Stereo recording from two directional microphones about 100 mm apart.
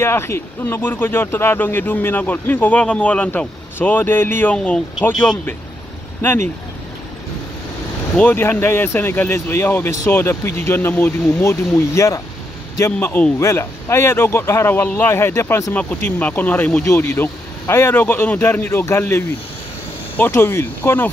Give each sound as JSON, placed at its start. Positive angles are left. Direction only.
{"t": 0.0, "sound": "speech", "side_deg": 25}
{"t": 8.2, "sound": "speech", "side_deg": 20}